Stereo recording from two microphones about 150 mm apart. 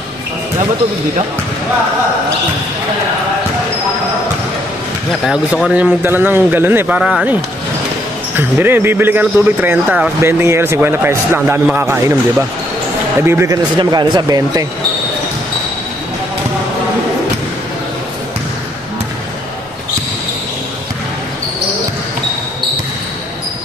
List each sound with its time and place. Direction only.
5.2 s a man's voice: 5° right (ahead or behind)
8.4 s a man's voice: 15° right (ahead or behind)
13.7 s speech: 25° right (ahead or behind)